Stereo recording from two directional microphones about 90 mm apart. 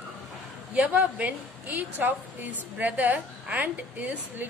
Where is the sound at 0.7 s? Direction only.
15° right (ahead or behind).